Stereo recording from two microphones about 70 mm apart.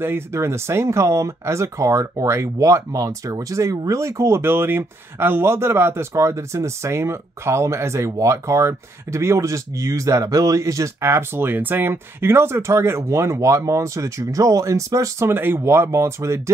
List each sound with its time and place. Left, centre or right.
0.0 s speech: right
4.4 s speech: right
15.2 s speech: right